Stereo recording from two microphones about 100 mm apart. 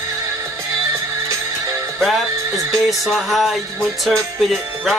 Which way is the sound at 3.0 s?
Centre (ahead or behind).